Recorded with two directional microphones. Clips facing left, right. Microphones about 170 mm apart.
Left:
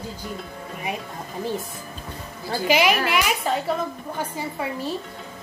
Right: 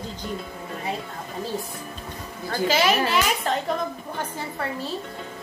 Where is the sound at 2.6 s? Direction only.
15° left (ahead or behind).